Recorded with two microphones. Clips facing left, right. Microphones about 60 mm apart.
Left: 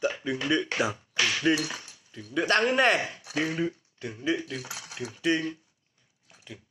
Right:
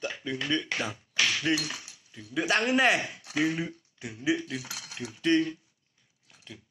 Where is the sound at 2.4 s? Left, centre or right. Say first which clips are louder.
Left 2 dB; centre.